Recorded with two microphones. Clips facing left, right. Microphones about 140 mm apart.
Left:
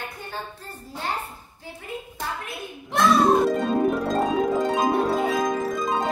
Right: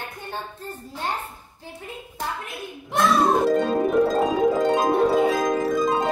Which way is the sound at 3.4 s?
Centre (ahead or behind).